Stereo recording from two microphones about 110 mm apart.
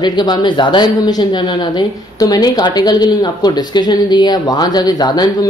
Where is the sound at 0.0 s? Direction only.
40° left (ahead or behind).